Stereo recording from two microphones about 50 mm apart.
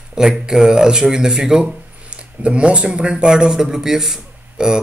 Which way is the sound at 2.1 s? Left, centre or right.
Right.